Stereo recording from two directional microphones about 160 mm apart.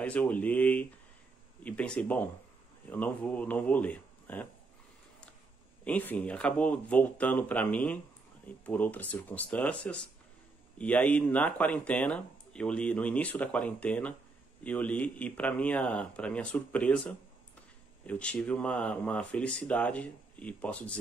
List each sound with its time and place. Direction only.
0.0 s speech: 10° left (ahead or behind)
5.9 s speech: 10° left (ahead or behind)